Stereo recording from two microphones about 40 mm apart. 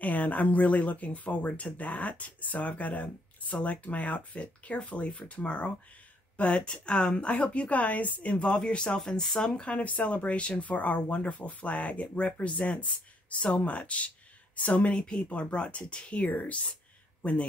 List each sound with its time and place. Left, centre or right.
0.0 s speech: left; by 9.7 s centre
9.7 s speech: left
16.3 s speech: left
17.2 s speech: left